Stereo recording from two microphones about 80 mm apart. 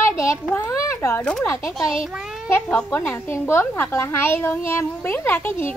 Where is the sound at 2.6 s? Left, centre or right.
Left.